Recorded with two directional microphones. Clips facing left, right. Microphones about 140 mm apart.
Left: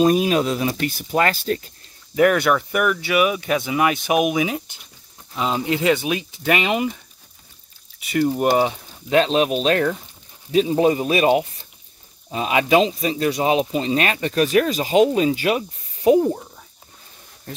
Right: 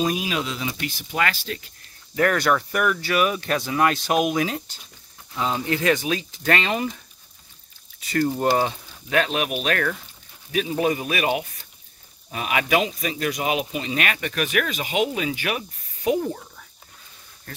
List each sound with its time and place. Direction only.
0.0 s speech: 45° left (ahead or behind)
2.1 s speech: 15° left (ahead or behind)
8.1 s speech: 15° left (ahead or behind)